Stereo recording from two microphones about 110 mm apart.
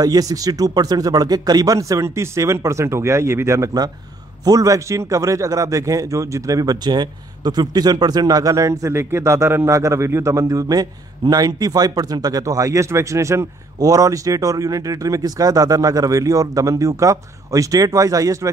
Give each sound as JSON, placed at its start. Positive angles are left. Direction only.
{"t": 0.0, "sound": "a man's voice", "side_deg": -35}